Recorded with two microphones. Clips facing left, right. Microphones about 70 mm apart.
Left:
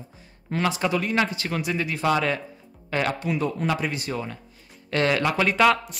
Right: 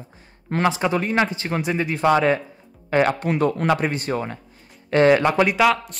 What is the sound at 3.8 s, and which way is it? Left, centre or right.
Speech, right.